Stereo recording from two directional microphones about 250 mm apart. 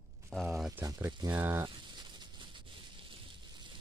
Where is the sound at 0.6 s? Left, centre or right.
Centre.